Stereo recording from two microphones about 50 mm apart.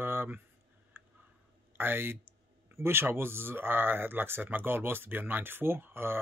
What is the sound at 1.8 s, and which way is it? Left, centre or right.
Speech, right.